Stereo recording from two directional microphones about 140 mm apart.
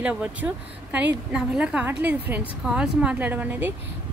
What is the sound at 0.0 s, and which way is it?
Speech, 10° right (ahead or behind).